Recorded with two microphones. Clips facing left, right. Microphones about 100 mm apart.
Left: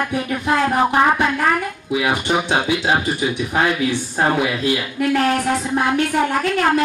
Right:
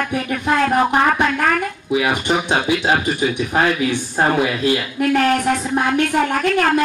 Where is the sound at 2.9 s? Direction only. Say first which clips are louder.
Right 1 dB; 20° left (ahead or behind).